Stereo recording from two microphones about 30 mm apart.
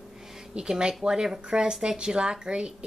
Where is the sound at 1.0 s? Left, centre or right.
Right.